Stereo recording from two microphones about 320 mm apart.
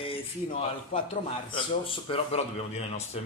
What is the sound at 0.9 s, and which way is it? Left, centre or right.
Speech, centre.